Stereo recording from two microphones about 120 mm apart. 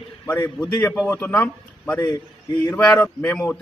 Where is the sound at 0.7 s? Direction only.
15° left (ahead or behind).